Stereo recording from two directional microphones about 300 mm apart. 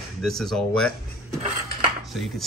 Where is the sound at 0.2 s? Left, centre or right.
Centre.